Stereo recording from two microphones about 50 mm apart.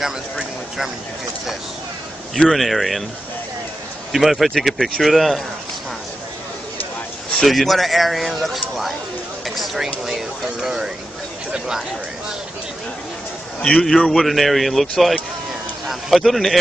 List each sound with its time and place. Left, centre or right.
0.0 s speech: centre
2.5 s a man's voice: centre
4.1 s a man's voice: centre
7.4 s a man's voice: centre
10.0 s a man's voice: centre
13.6 s a man's voice: centre
13.8 s a man's voice: centre